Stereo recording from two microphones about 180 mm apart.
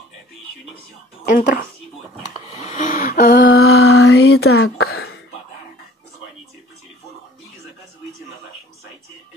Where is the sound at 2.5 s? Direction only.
40° left (ahead or behind); by 5.1 s 65° left (ahead or behind).